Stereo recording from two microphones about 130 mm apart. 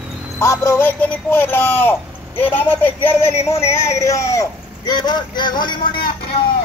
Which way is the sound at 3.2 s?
55° left (ahead or behind).